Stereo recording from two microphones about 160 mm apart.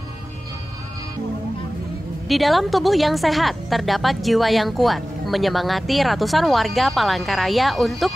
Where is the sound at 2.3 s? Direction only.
Centre (ahead or behind).